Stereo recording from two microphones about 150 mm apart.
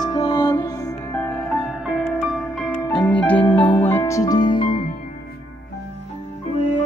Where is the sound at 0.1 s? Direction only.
40° left (ahead or behind).